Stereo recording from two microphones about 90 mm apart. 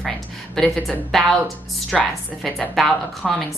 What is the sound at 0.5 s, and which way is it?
Speech, 5° left (ahead or behind).